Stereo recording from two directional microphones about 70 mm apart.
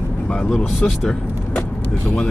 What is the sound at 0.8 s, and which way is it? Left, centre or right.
Vehicle, centre.